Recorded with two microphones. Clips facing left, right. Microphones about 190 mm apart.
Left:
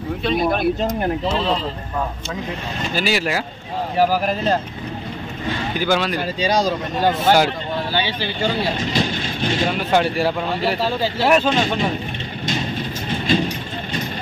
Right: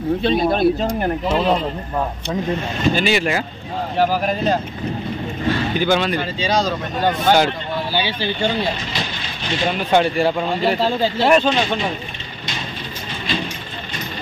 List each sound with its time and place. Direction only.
0.2 s speech: 30° right (ahead or behind)
1.3 s speech: 10° right (ahead or behind)
2.9 s speech: 5° left (ahead or behind)
5.8 s speech: 5° left (ahead or behind)
7.9 s speech: 15° right (ahead or behind)
9.7 s speech: centre (ahead or behind)
13.3 s speech: 50° left (ahead or behind)